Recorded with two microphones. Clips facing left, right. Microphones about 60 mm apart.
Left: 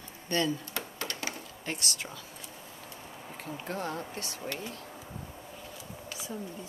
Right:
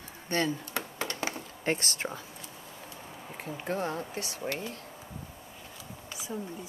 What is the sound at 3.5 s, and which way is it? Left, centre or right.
Speech, right.